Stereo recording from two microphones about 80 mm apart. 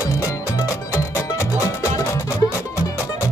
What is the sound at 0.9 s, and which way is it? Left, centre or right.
Music, left.